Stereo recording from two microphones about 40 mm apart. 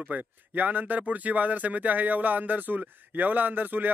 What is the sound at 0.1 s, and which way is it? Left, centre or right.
Speech, right.